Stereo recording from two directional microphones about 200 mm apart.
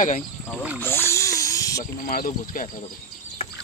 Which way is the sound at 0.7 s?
10° left (ahead or behind).